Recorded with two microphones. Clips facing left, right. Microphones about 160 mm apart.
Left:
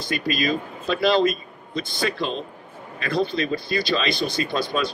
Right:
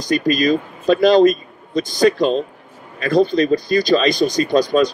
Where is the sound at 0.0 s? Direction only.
40° right (ahead or behind).